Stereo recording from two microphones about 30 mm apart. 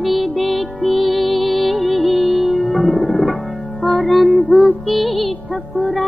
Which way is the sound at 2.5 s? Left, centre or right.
Left.